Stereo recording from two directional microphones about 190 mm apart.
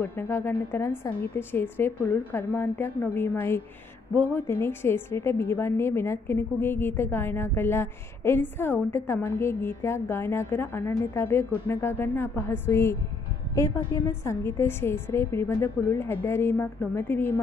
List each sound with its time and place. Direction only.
0.0 s a woman's voice: 10° left (ahead or behind)